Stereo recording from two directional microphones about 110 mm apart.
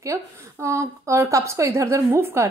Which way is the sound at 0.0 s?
25° right (ahead or behind).